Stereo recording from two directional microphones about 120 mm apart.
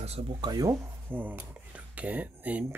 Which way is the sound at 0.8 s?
15° right (ahead or behind).